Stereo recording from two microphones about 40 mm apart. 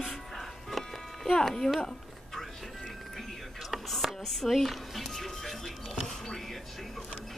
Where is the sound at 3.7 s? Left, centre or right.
Centre.